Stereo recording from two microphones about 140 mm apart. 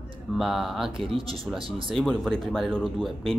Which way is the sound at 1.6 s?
40° right (ahead or behind).